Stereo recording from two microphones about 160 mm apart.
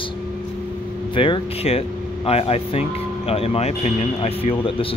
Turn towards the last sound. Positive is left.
turn(degrees=35)  # may be behind; listen again after turning